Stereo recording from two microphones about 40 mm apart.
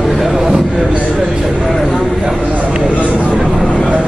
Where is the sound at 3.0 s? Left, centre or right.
Left.